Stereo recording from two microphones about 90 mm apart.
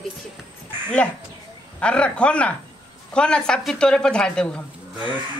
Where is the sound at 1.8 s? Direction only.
10° left (ahead or behind).